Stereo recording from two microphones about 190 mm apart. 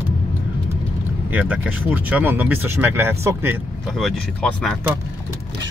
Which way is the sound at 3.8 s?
Centre (ahead or behind).